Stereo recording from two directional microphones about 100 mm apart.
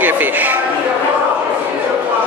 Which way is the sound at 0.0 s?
20° right (ahead or behind).